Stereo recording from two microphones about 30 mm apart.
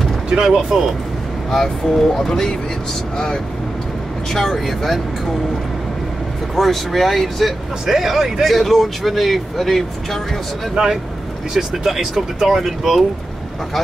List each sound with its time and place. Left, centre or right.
0.3 s speech: right
1.5 s speech: centre
4.3 s speech: centre
6.5 s speech: centre
7.8 s speech: centre
10.7 s speech: centre
11.5 s speech: centre